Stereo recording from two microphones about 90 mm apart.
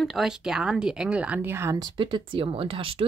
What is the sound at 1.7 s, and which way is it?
Speech, 55° right (ahead or behind).